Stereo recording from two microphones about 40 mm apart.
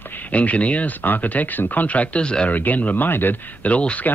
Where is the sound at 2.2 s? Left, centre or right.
Left.